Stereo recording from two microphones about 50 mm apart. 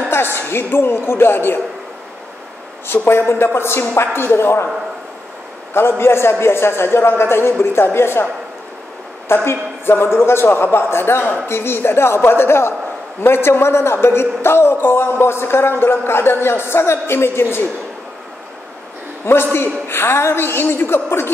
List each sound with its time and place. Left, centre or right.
0.1 s a woman's voice: left
2.9 s speech: left
5.7 s speech: left
9.3 s speech: left
19.5 s speech: left